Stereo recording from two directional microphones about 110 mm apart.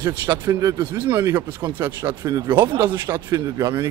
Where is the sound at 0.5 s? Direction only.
30° right (ahead or behind).